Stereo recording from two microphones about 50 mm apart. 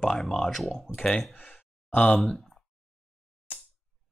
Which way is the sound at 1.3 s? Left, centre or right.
Left.